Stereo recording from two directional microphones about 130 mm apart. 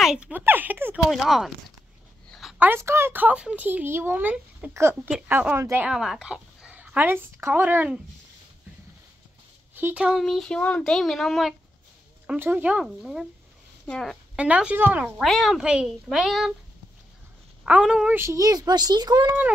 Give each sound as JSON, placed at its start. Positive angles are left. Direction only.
{"t": 0.0, "sound": "speech", "side_deg": -5}
{"t": 1.1, "sound": "speech", "side_deg": 0}
{"t": 2.6, "sound": "speech", "side_deg": -20}
{"t": 5.9, "sound": "speech", "side_deg": -5}
{"t": 9.8, "sound": "speech", "side_deg": -10}
{"t": 12.3, "sound": "speech", "side_deg": -15}
{"t": 14.3, "sound": "speech", "side_deg": -10}
{"t": 15.1, "sound": "speech", "side_deg": 0}
{"t": 17.6, "sound": "speech", "side_deg": -5}
{"t": 18.1, "sound": "a child's voice", "side_deg": -20}